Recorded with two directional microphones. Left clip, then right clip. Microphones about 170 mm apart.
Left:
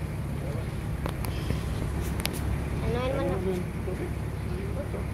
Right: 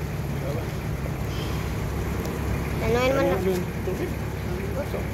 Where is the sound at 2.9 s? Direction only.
20° right (ahead or behind).